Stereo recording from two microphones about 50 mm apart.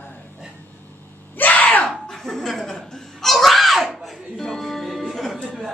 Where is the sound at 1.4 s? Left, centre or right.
Left.